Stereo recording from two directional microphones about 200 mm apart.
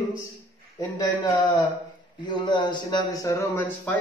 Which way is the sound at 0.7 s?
20° left (ahead or behind).